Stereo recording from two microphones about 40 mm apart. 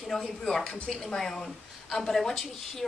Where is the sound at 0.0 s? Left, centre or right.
Centre.